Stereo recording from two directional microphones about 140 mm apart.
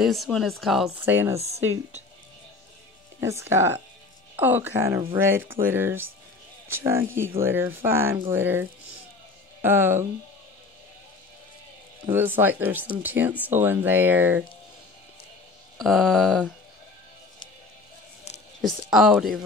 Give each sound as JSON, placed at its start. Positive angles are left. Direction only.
{"t": 0.0, "sound": "speech", "side_deg": 0}
{"t": 1.0, "sound": "speech", "side_deg": -15}
{"t": 3.2, "sound": "speech", "side_deg": -20}
{"t": 12.1, "sound": "speech", "side_deg": -15}
{"t": 15.8, "sound": "speech", "side_deg": 5}
{"t": 18.6, "sound": "speech", "side_deg": 0}